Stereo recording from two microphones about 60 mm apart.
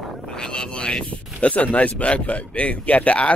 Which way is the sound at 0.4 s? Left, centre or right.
Centre.